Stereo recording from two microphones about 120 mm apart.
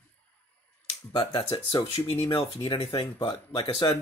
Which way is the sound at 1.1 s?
45° left (ahead or behind).